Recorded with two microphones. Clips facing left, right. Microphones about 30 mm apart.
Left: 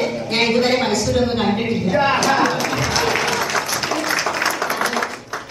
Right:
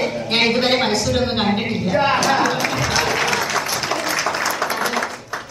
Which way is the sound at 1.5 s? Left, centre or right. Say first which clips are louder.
Left 1 dB; centre.